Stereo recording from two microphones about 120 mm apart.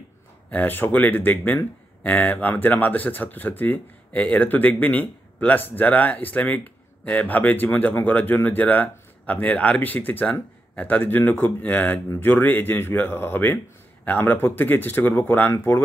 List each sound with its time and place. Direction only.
0.5 s speech: 15° left (ahead or behind)